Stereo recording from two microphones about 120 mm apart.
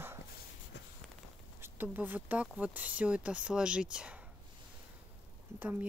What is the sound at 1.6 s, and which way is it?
Speech, 15° right (ahead or behind).